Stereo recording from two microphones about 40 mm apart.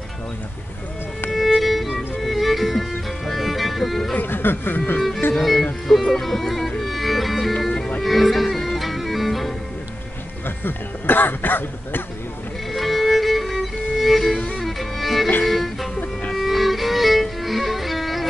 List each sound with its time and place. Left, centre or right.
1.6 s music: centre
4.2 s speech: left
5.3 s music: centre
6.2 s speech: centre
6.8 s music: centre
10.6 s speech: left
12.7 s music: centre
14.6 s violin: centre
15.4 s music: centre